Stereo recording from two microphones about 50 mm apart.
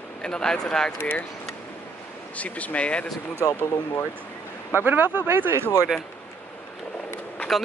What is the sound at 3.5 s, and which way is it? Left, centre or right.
Speech, left.